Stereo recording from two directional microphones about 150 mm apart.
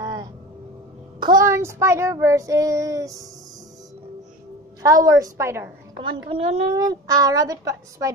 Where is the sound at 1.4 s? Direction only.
20° right (ahead or behind).